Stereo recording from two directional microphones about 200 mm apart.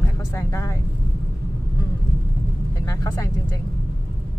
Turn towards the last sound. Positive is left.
turn(degrees=15)  # may be behind; listen again after turning